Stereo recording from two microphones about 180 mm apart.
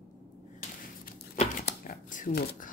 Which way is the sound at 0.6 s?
45° left (ahead or behind).